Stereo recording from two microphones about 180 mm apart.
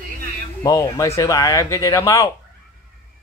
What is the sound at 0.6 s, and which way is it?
Speech, 20° left (ahead or behind).